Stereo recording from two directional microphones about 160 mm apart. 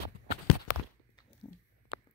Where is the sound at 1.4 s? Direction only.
30° left (ahead or behind).